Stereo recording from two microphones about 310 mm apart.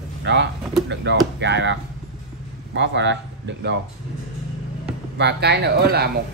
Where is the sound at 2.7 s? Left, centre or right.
Right.